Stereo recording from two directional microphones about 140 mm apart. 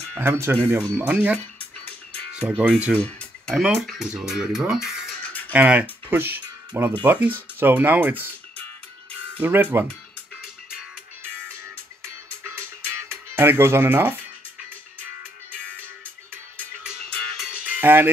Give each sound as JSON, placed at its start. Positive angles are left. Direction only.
{"t": 0.2, "sound": "speech", "side_deg": -15}
{"t": 1.6, "sound": "music", "side_deg": 10}
{"t": 2.3, "sound": "speech", "side_deg": -10}
{"t": 3.0, "sound": "music", "side_deg": 10}
{"t": 3.5, "sound": "speech", "side_deg": 0}
{"t": 5.5, "sound": "speech", "side_deg": -10}
{"t": 9.4, "sound": "speech", "side_deg": -15}
{"t": 11.6, "sound": "music", "side_deg": -20}
{"t": 13.1, "sound": "speech", "side_deg": -15}
{"t": 17.5, "sound": "music", "side_deg": -10}